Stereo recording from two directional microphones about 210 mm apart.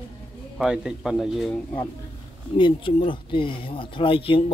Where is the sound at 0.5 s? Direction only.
5° right (ahead or behind).